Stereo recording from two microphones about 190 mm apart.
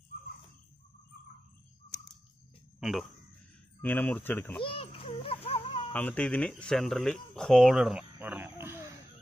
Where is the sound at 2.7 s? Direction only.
Centre (ahead or behind).